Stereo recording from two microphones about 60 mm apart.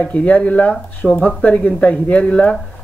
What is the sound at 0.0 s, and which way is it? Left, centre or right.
Speech, left.